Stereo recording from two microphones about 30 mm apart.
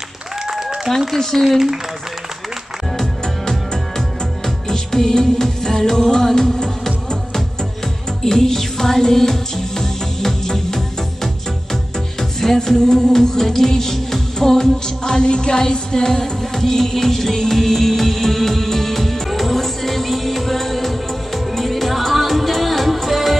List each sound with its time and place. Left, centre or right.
0.5 s applause: centre
1.1 s speech: centre
1.4 s speech: centre
3.0 s music: centre
16.1 s music: centre